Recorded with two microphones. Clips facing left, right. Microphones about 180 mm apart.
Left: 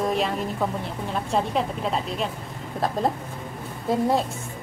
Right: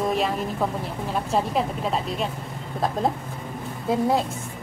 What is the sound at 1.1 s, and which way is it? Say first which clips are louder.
Speech: right 1 dB; 5° right (ahead or behind).